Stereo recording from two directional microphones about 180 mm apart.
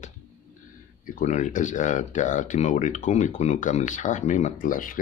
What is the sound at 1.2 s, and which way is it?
Speech, 45° left (ahead or behind).